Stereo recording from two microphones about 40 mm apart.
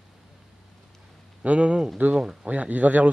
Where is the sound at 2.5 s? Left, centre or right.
Right.